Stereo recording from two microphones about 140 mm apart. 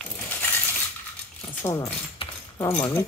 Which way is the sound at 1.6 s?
20° left (ahead or behind).